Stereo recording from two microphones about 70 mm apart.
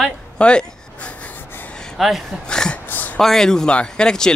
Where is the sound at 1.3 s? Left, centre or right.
Left.